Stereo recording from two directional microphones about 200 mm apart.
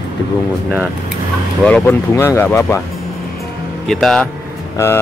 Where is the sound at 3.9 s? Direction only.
Centre (ahead or behind).